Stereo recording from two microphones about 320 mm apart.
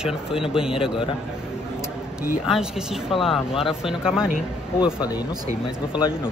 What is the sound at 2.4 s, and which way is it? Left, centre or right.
Speech, centre.